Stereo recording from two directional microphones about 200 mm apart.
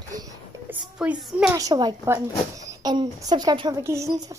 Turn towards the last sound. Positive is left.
turn(degrees=-15)  # may be behind; listen again after turning